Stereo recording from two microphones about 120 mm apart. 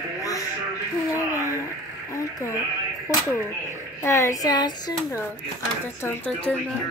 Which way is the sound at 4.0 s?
25° left (ahead or behind).